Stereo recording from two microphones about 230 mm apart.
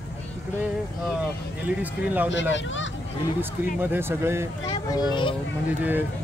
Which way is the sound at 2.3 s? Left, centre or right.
Left.